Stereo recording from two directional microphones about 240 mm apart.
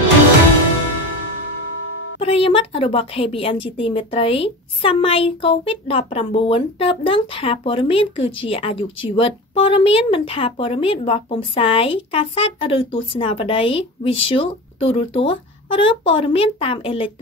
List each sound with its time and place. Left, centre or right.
2.1 s speech: left